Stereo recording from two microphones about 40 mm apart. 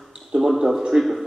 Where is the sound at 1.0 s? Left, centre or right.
Centre.